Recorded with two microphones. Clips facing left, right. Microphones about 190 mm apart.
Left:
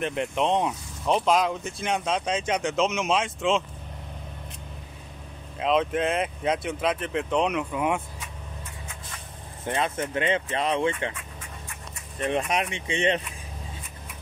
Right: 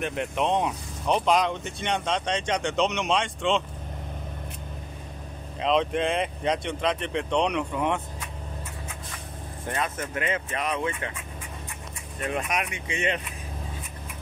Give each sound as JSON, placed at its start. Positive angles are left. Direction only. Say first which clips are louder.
{"t": 0.0, "sound": "speech", "louder": "left 1 dB", "side_deg": 0}
{"t": 5.6, "sound": "speech", "louder": "even", "side_deg": 5}
{"t": 9.7, "sound": "speech", "louder": "left 3 dB", "side_deg": 25}
{"t": 12.3, "sound": "speech", "louder": "left 3 dB", "side_deg": 30}